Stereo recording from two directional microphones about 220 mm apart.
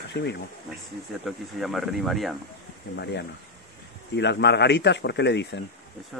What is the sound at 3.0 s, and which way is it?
Speech, 50° left (ahead or behind).